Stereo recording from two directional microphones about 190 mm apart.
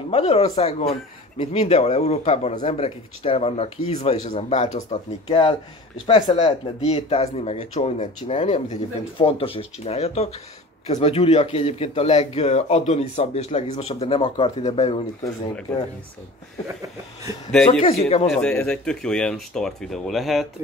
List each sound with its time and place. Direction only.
0.1 s speech: 30° left (ahead or behind)
5.3 s speech: 25° left (ahead or behind)
17.6 s speech: 30° left (ahead or behind)
18.3 s speech: 5° left (ahead or behind)